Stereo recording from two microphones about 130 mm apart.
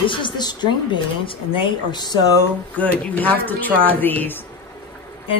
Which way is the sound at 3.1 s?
15° left (ahead or behind).